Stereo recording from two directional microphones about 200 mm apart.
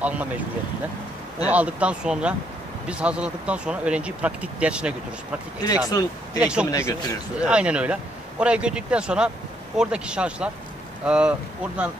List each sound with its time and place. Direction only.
0.0 s speech: 10° right (ahead or behind)
1.5 s speech: 5° right (ahead or behind)
5.6 s speech: 20° left (ahead or behind)
6.4 s speech: 5° right (ahead or behind)
6.7 s speech: 15° left (ahead or behind)
7.3 s speech: 5° right (ahead or behind)